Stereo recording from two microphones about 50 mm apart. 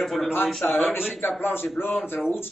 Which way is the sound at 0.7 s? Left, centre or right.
Left.